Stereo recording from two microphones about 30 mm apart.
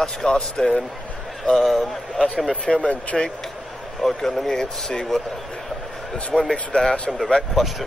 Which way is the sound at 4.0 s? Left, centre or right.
Centre.